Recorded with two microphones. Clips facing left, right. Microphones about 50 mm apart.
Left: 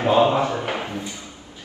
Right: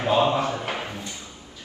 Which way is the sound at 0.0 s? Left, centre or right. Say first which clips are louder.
Left 4 dB; left.